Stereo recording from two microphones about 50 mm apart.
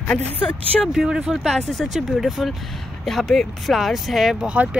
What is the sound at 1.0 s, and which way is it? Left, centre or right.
Speech, centre.